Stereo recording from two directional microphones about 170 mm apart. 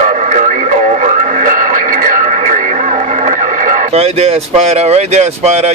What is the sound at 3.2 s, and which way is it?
Radio, 50° right (ahead or behind).